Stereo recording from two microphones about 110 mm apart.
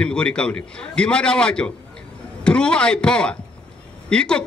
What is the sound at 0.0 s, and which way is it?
A man's voice, 10° left (ahead or behind).